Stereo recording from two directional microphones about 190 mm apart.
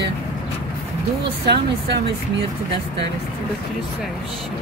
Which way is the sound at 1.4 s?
60° right (ahead or behind).